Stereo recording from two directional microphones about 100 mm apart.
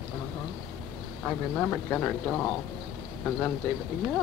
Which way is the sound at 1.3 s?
15° left (ahead or behind).